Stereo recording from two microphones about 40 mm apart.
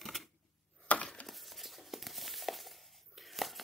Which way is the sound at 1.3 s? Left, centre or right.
Centre.